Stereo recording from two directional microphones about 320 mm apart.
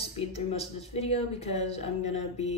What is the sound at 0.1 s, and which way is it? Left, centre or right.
Speech, centre.